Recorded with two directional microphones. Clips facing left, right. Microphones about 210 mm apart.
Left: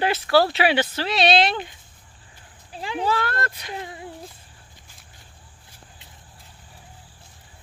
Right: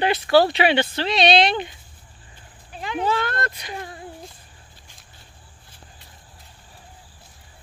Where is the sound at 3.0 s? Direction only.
5° left (ahead or behind).